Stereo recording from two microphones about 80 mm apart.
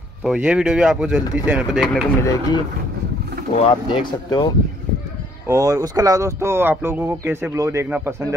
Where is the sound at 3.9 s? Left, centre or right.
Left.